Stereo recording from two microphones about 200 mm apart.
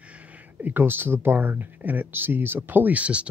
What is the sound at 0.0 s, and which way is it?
Speech, 5° right (ahead or behind).